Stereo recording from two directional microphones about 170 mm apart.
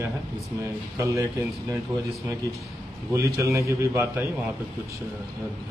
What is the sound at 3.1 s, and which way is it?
A man's voice, 15° right (ahead or behind).